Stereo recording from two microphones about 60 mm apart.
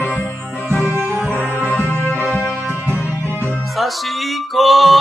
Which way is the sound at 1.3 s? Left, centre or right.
Left.